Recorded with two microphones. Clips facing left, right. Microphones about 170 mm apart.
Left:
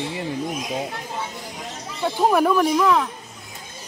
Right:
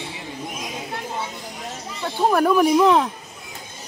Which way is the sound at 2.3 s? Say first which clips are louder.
Right 1 dB; centre (ahead or behind).